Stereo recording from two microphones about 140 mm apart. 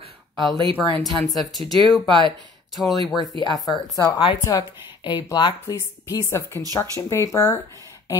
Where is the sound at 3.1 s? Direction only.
30° left (ahead or behind).